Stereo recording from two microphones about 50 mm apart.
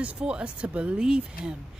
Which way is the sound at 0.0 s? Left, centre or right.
Right.